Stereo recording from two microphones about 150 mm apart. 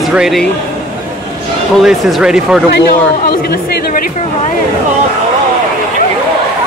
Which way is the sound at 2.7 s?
85° left.